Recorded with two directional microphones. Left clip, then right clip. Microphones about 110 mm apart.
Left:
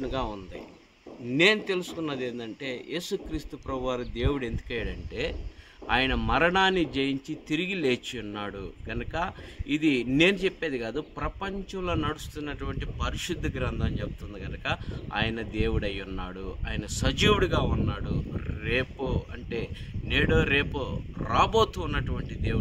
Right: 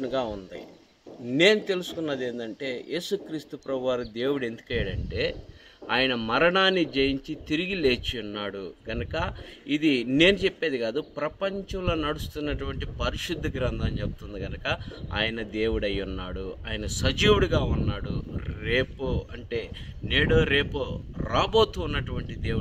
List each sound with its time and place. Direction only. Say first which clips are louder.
1.3 s a man's voice: right 2 dB; 25° left (ahead or behind)
5.9 s a man's voice: right 1 dB; 40° left (ahead or behind)